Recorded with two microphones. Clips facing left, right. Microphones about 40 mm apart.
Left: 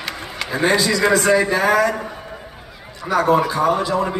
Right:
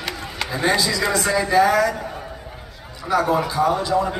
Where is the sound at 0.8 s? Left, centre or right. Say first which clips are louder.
Left 4 dB; left.